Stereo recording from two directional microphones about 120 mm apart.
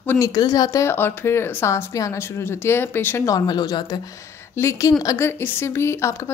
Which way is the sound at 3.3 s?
35° left (ahead or behind).